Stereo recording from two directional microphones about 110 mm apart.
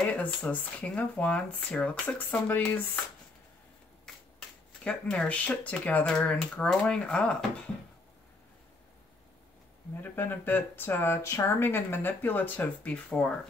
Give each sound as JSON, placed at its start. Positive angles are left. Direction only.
{"t": 0.0, "sound": "speech", "side_deg": 10}
{"t": 4.1, "sound": "shuffling cards", "side_deg": 5}
{"t": 4.8, "sound": "speech", "side_deg": 10}
{"t": 10.1, "sound": "speech", "side_deg": 20}